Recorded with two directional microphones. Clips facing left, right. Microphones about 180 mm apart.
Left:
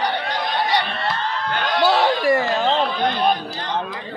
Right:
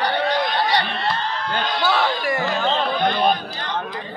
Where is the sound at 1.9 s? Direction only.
35° left (ahead or behind).